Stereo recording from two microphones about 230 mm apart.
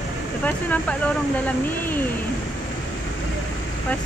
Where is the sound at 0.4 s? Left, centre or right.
Centre.